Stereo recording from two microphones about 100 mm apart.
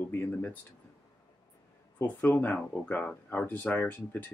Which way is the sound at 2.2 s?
15° left (ahead or behind).